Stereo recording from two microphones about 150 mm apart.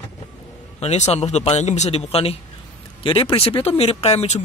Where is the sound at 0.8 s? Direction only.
45° left (ahead or behind).